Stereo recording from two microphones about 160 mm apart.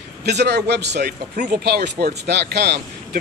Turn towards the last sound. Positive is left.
turn(degrees=-90)